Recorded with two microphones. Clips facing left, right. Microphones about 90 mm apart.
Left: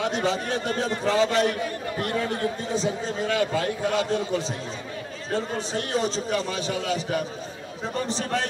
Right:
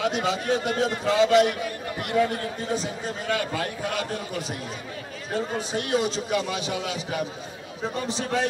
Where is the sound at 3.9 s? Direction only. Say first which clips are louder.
Left 5 dB; 25° left (ahead or behind).